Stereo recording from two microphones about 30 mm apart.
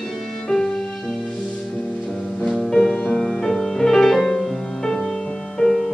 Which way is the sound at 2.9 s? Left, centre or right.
Left.